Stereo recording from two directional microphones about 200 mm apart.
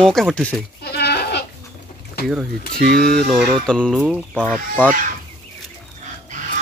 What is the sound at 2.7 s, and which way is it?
Speech, 50° right (ahead or behind).